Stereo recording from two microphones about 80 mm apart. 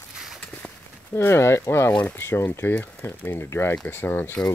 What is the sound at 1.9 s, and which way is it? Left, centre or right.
Speech, centre.